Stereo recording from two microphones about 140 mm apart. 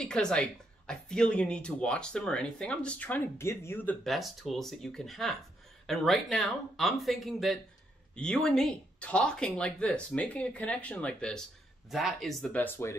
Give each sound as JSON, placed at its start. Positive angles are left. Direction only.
{"t": 0.0, "sound": "speech", "side_deg": 5}
{"t": 4.0, "sound": "speech", "side_deg": 0}
{"t": 12.5, "sound": "speech", "side_deg": 15}